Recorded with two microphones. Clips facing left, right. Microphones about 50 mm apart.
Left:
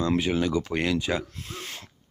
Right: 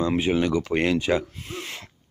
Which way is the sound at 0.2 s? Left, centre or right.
Right.